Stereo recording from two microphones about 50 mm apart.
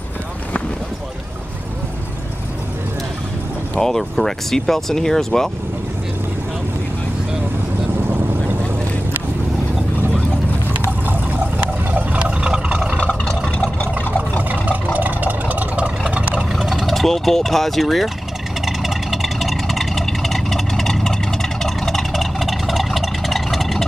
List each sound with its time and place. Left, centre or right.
3.8 s speech: centre
11.1 s a sound: right
12.4 s vehicle: centre
13.0 s vehicle: centre
14.5 s vehicle: right
16.3 s a sound: centre
16.8 s speech: centre
18.7 s vehicle: centre